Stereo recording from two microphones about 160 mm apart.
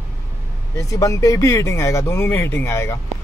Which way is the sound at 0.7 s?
20° left (ahead or behind).